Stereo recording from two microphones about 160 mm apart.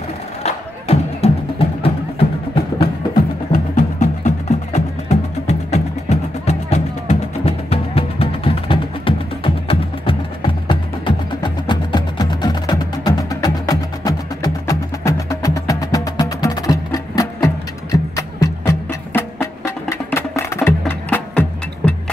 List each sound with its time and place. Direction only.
0.4 s music: 40° left (ahead or behind)
3.5 s music: 50° left (ahead or behind); by 21.9 s 10° left (ahead or behind)